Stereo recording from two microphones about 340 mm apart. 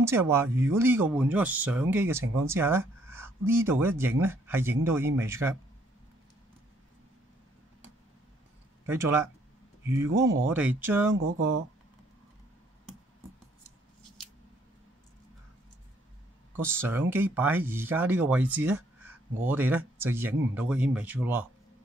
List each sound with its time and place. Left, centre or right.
0.0 s speech: centre
8.8 s speech: centre
10.0 s speech: right
10.5 s speech: centre
16.5 s speech: centre